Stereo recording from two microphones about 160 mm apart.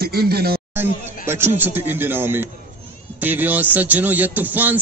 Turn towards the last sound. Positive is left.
turn(degrees=-10)  # may be behind; listen again after turning